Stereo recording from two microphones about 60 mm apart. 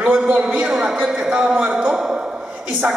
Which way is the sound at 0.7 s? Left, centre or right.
Centre.